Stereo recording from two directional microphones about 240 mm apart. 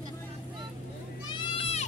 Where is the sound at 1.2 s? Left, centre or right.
Left.